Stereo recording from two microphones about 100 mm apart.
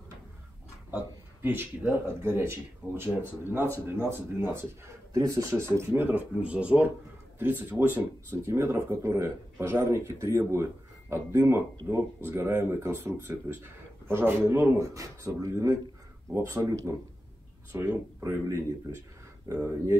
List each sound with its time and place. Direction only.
1.4 s speech: 20° right (ahead or behind)